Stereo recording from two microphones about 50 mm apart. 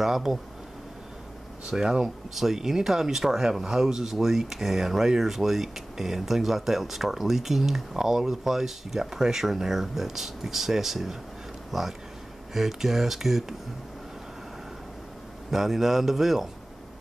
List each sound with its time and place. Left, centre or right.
0.0 s speech: centre
1.7 s a man's voice: centre
15.5 s a man's voice: centre